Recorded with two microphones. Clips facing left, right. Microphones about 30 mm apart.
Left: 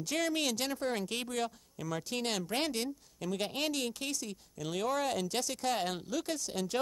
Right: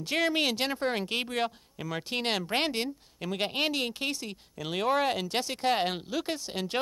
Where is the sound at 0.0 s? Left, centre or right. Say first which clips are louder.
Right 5 dB; right.